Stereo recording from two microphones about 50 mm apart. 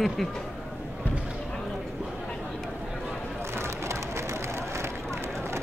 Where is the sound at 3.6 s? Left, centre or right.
Right.